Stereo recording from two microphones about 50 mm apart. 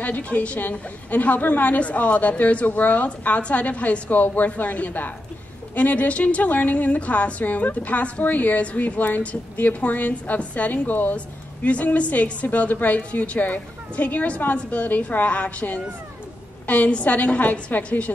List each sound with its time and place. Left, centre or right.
0.0 s a woman's voice: left
11.1 s a woman's voice: left